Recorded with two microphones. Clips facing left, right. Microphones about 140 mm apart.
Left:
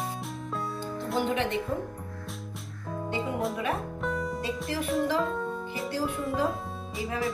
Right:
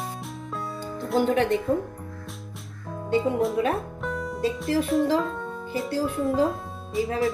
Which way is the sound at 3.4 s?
Centre (ahead or behind).